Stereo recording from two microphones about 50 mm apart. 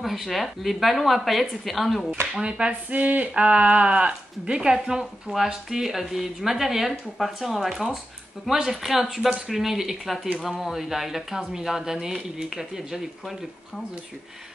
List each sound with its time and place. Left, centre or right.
0.0 s a woman's voice: centre
2.3 s speech: centre
2.9 s a sound: right
3.3 s a woman's voice: right; by 13.4 s centre